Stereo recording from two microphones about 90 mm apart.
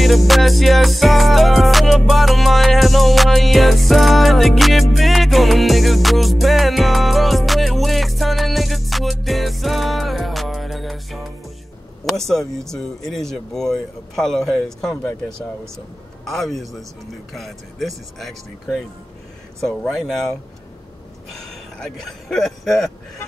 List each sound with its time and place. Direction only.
0.0 s music: centre (ahead or behind)
12.0 s a sound: 5° left (ahead or behind)
12.7 s speech: 5° left (ahead or behind)
16.3 s speech: centre (ahead or behind)
19.6 s speech: 15° left (ahead or behind)
19.9 s speech: 5° left (ahead or behind)